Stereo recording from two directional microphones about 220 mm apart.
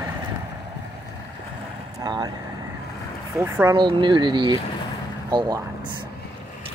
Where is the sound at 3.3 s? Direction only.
10° right (ahead or behind).